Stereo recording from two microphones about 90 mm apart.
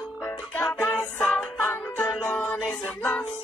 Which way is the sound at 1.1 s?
25° left (ahead or behind).